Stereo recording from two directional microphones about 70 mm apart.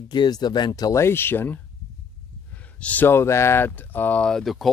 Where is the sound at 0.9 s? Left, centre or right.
Left.